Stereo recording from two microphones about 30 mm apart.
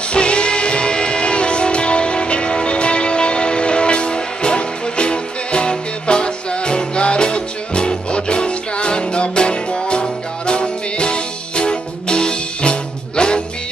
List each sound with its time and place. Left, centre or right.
0.1 s music: left